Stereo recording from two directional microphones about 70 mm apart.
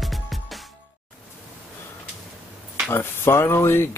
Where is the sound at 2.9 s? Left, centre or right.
Left.